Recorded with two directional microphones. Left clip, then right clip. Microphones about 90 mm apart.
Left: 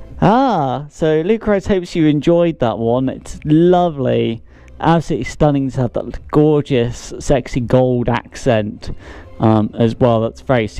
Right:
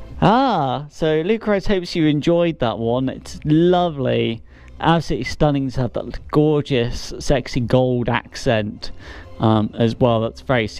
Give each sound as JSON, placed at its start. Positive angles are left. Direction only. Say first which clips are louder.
{"t": 0.2, "sound": "speech", "louder": "left 3 dB", "side_deg": 35}